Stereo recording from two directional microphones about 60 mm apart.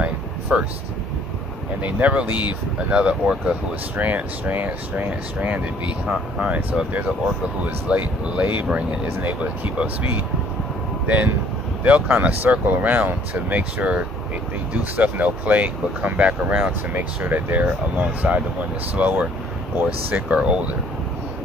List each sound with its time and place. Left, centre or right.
0.0 s a sound: right
1.8 s speech: right
8.6 s speech: centre
11.1 s speech: right